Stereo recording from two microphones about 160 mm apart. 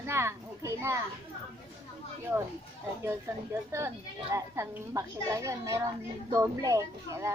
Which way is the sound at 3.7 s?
15° right (ahead or behind).